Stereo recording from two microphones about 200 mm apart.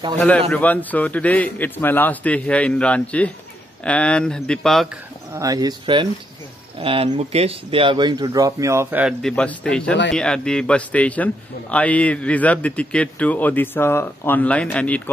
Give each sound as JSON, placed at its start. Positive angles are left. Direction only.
{"t": 0.5, "sound": "a man's voice", "side_deg": 10}
{"t": 5.3, "sound": "speech", "side_deg": -15}
{"t": 9.2, "sound": "a man's voice", "side_deg": 5}